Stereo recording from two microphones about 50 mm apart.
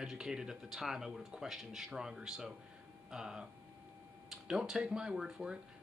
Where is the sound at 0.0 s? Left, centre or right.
Centre.